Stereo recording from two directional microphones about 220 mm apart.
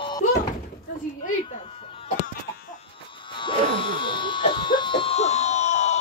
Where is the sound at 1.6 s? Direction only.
30° left (ahead or behind).